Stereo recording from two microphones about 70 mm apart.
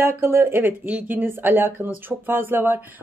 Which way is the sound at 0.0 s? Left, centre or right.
Right.